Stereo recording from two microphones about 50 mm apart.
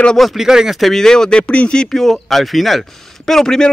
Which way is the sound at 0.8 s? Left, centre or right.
Centre.